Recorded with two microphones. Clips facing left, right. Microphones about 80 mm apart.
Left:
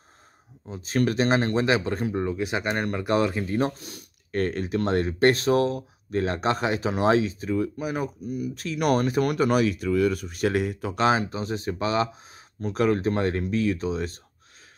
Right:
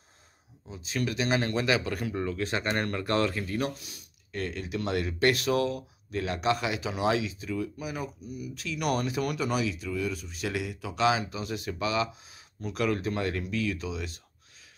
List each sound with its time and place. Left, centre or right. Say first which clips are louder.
0.7 s speech: left 7 dB; left
3.8 s speech: left 8 dB; left